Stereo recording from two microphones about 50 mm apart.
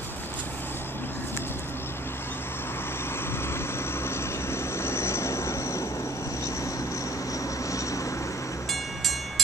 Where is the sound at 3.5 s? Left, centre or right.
Left.